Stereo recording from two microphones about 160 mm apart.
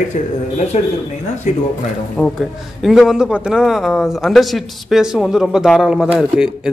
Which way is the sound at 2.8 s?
Centre (ahead or behind).